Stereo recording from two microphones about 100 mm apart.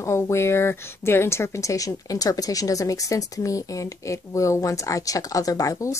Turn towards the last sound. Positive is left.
turn(degrees=35)  # may be behind; listen again after turning